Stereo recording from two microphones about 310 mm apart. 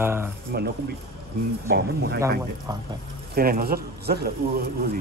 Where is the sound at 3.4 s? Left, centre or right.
Right.